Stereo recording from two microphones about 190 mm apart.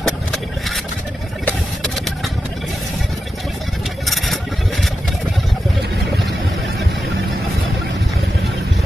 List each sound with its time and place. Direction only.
0.0 s engine: centre (ahead or behind)